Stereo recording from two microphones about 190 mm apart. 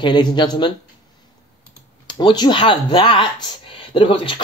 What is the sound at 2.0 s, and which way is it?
Speech, 25° left (ahead or behind).